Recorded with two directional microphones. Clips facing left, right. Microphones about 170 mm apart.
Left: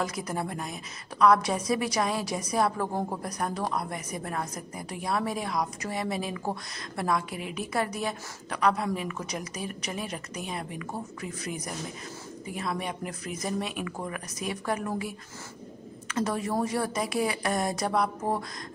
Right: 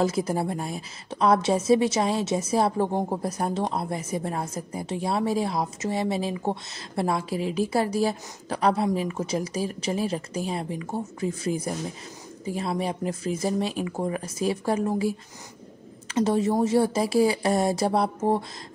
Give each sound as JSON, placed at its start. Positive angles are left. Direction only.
{"t": 0.0, "sound": "a woman's voice", "side_deg": -30}